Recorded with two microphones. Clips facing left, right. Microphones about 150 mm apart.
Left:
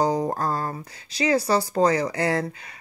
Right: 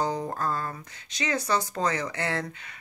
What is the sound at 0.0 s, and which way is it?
Speech, 35° left (ahead or behind).